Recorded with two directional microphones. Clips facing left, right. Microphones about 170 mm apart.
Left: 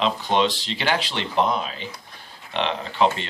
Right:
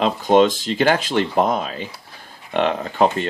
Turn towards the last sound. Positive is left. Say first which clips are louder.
# right 3 dB
turn(degrees=-45)  # may be behind; listen again after turning